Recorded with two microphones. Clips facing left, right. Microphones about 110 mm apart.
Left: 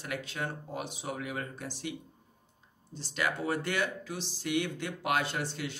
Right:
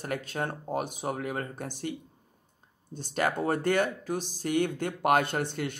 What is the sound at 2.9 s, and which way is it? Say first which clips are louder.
Speech: right 5 dB; 50° right (ahead or behind).